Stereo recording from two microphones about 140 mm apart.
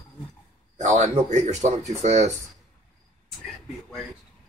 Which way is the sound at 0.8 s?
60° right (ahead or behind).